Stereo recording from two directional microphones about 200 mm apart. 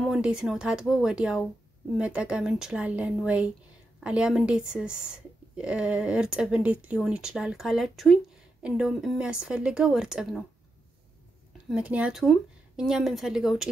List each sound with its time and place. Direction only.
0.0 s speech: centre (ahead or behind)
11.7 s speech: 5° right (ahead or behind)